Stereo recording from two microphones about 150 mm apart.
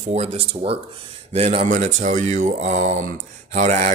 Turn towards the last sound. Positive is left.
turn(degrees=-50)  # may be behind; listen again after turning